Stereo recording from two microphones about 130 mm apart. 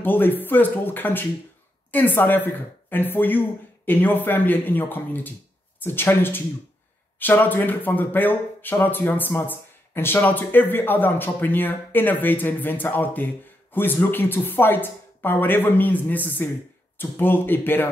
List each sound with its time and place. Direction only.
0.0 s speech: 15° left (ahead or behind)